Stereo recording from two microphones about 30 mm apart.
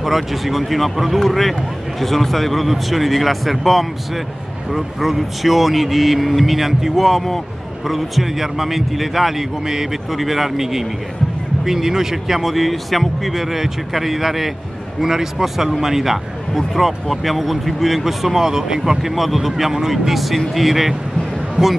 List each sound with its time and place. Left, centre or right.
0.0 s speech: centre
21.6 s speech: right